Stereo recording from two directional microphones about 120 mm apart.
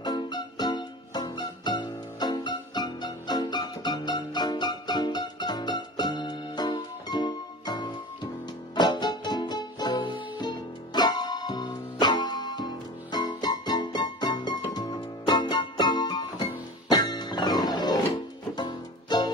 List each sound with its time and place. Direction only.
0.0 s music: 35° left (ahead or behind)